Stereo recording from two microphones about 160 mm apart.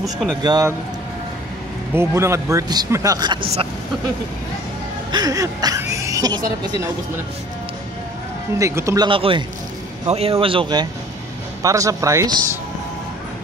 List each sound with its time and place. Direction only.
0.0 s speech: centre (ahead or behind)
0.4 s a man's voice: 25° right (ahead or behind)
2.0 s a man's voice: 15° right (ahead or behind)
5.1 s a man's voice: 20° right (ahead or behind)
8.5 s a man's voice: 20° right (ahead or behind)